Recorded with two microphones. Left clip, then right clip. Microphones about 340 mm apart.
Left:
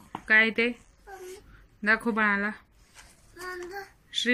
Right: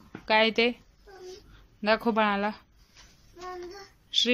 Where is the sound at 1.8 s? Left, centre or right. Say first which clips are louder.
Even; centre.